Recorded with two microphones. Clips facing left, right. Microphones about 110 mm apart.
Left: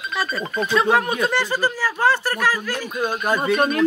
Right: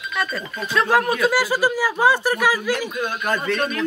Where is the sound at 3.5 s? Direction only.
40° left (ahead or behind).